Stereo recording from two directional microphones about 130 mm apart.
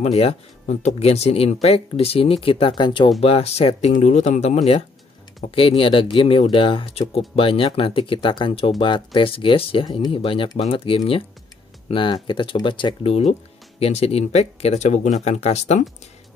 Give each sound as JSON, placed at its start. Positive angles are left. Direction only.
{"t": 0.0, "sound": "speech", "side_deg": 50}
{"t": 3.2, "sound": "speech", "side_deg": 50}
{"t": 5.4, "sound": "speech", "side_deg": 45}